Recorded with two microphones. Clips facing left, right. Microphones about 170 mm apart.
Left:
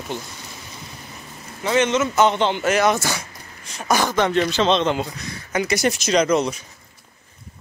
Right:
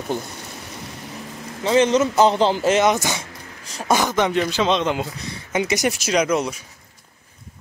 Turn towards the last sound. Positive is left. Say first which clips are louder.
# left 2 dB
turn(degrees=-5)  # may be behind; listen again after turning